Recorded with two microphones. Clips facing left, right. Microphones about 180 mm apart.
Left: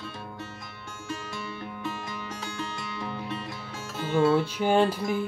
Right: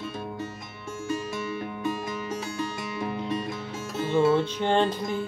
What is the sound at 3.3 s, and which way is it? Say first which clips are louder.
Music: right 6 dB; 25° right (ahead or behind).